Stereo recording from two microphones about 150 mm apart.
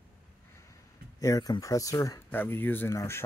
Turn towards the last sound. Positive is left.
turn(degrees=15)  # may be behind; listen again after turning